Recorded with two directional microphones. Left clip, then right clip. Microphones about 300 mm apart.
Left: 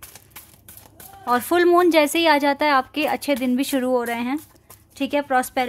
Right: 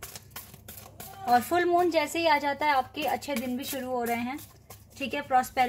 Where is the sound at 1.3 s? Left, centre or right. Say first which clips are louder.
Left 6 dB; left.